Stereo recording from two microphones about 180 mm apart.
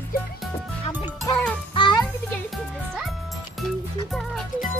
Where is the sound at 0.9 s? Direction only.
25° left (ahead or behind).